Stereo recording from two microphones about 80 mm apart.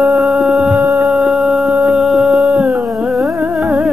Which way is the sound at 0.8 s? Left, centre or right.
Right.